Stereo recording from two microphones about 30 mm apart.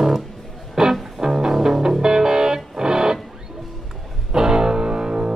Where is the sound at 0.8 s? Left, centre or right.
Right.